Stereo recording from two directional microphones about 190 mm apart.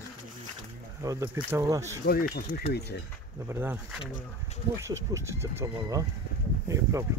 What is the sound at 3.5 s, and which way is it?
Speech, 10° right (ahead or behind).